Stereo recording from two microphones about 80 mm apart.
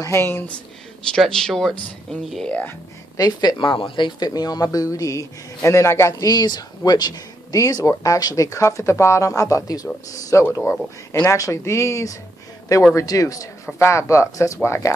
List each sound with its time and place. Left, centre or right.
0.0 s speech: left
1.1 s speech: centre
2.4 s speech: centre
3.2 s speech: left
4.6 s speech: left
6.1 s speech: left
10.3 s speech: left
11.2 s speech: left